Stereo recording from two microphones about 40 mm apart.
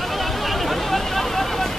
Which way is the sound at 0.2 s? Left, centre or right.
Centre.